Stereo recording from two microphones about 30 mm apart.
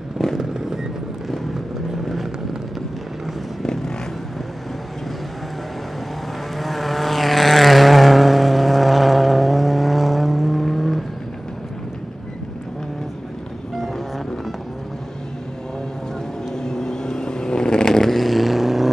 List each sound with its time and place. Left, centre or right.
0.4 s a sound: right
3.6 s vehicle: centre
6.6 s vehicle: centre
16.5 s vehicle: centre
18.1 s vehicle: centre